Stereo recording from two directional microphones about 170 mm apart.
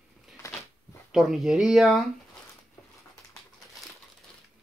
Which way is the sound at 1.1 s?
Centre (ahead or behind).